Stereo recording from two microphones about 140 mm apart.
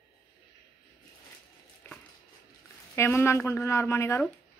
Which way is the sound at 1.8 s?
20° left (ahead or behind).